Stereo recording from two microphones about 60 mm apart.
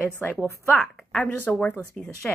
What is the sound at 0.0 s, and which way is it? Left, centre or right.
Speech, left.